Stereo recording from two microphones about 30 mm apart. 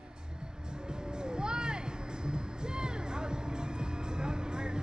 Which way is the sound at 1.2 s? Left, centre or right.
Right.